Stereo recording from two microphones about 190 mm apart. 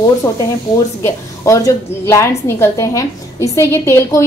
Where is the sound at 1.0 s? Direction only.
15° left (ahead or behind).